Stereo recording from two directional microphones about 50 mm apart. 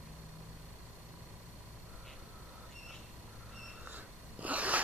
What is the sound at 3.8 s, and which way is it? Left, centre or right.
Sneeze, right.